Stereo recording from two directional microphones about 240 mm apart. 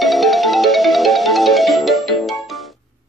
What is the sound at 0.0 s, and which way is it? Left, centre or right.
Music, centre.